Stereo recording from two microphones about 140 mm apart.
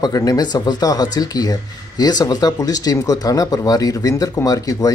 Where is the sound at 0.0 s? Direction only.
25° left (ahead or behind).